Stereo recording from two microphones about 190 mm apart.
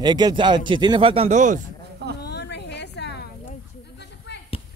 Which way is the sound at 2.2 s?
60° left (ahead or behind).